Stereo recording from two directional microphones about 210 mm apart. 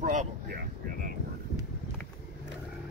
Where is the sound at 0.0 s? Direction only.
40° right (ahead or behind).